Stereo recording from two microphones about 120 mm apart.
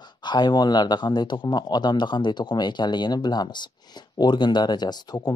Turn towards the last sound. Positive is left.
turn(degrees=35)  # may be behind; listen again after turning